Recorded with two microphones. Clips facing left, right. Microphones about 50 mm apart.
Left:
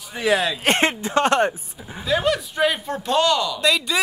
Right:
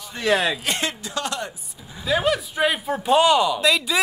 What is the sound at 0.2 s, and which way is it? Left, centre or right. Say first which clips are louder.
Speech: left 1 dB; centre.